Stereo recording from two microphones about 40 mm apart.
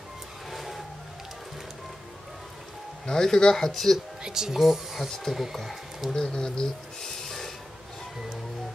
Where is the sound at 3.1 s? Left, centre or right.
Centre.